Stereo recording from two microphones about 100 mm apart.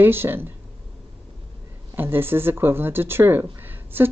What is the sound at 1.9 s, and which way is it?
Speech, 20° right (ahead or behind).